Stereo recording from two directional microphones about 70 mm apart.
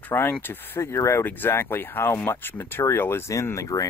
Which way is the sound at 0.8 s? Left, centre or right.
Left.